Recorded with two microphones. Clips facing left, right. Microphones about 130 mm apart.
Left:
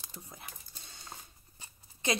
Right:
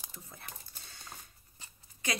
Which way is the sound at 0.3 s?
20° left (ahead or behind).